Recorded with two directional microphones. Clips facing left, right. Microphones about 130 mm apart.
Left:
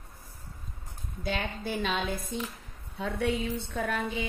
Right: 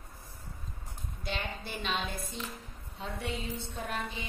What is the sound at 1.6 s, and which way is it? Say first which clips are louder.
Speech: left 5 dB; 50° left (ahead or behind).